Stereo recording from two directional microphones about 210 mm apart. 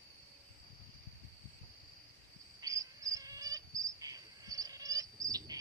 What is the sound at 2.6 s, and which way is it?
Cricket, 15° right (ahead or behind).